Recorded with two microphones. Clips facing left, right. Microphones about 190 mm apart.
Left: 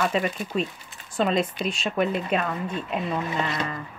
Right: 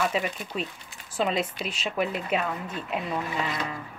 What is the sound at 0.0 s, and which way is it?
A woman's voice, 5° right (ahead or behind).